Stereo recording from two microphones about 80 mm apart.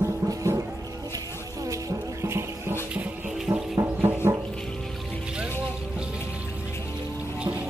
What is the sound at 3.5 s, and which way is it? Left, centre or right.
Music, right.